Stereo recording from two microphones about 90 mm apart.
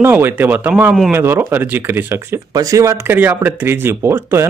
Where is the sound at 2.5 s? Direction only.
40° right (ahead or behind).